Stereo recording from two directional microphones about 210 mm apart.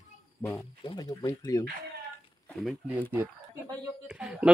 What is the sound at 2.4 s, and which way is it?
Speech, centre (ahead or behind).